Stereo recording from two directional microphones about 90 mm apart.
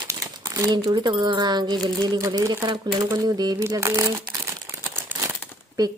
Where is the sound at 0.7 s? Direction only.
50° right (ahead or behind).